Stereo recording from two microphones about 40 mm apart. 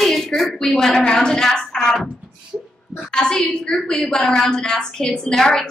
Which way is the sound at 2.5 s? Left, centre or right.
Right.